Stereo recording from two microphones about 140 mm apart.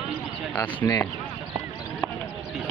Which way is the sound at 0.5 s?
15° left (ahead or behind).